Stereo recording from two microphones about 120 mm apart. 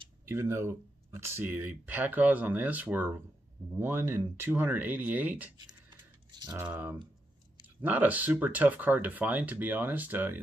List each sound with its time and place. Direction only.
0.2 s speech: 20° right (ahead or behind)
5.9 s a sound: 35° right (ahead or behind)
6.6 s speech: 15° right (ahead or behind)